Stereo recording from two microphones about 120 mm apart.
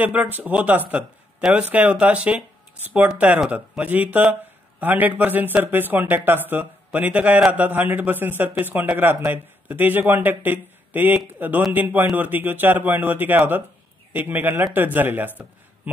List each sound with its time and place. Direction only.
0.0 s speech: 15° right (ahead or behind)